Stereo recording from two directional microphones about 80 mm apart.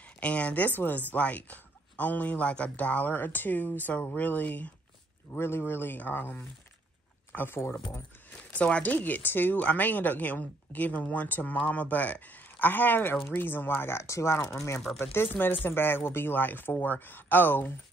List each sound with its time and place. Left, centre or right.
0.2 s speech: centre
5.4 s speech: left
8.5 s speech: centre; by 14.4 s left
14.4 s speech: centre
15.0 s speech: left